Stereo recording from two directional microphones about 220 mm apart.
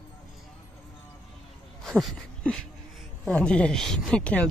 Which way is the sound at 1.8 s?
Centre (ahead or behind).